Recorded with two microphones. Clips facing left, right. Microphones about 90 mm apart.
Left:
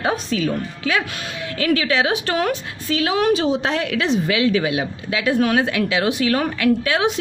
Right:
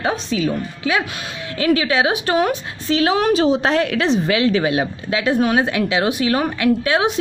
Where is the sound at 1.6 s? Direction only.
20° right (ahead or behind).